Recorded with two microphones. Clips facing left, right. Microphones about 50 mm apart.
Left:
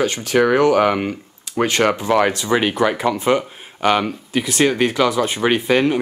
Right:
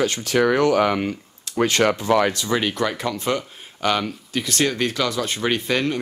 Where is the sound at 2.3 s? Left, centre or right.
Left.